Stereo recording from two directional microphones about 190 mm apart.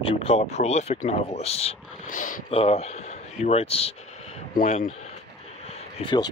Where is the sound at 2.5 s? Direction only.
30° left (ahead or behind).